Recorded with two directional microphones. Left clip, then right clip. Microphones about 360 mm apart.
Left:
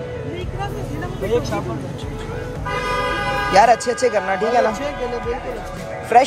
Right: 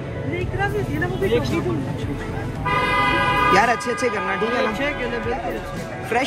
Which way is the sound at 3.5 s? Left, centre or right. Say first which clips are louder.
Left 4 dB; centre.